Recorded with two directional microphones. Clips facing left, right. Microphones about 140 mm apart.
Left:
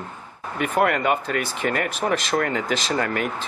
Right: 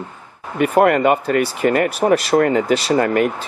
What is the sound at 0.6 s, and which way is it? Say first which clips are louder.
Speech: right 7 dB; centre (ahead or behind).